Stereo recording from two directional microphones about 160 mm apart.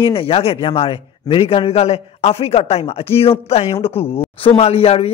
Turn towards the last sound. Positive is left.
turn(degrees=40)  # may be behind; listen again after turning